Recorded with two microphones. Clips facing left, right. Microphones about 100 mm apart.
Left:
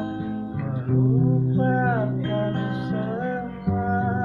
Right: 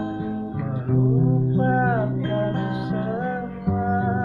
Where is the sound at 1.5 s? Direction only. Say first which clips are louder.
Right 2 dB; 5° right (ahead or behind).